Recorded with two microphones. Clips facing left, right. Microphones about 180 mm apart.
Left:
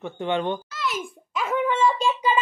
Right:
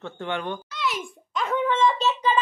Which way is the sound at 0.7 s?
Centre (ahead or behind).